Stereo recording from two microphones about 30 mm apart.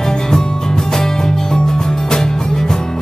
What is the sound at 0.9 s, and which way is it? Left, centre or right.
Music, centre.